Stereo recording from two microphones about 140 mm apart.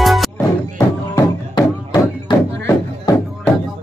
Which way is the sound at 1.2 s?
30° left (ahead or behind).